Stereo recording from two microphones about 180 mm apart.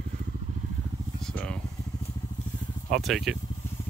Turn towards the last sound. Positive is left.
turn(degrees=0)  # may be behind; listen again after turning